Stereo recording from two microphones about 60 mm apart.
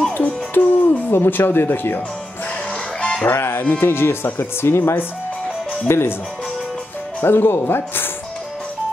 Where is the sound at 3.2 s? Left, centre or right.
Left.